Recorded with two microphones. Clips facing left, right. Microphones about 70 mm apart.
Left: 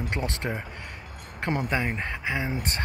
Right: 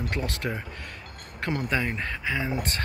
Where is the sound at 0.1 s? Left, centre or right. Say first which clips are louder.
Even; left.